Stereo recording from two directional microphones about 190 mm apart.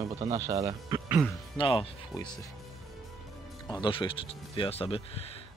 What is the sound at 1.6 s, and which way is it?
Speech, 25° left (ahead or behind).